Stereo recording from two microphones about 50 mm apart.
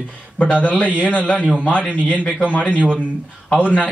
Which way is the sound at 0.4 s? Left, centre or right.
Left.